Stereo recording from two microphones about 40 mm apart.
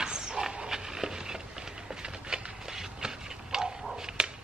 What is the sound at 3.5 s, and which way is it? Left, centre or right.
Bow-wow, centre.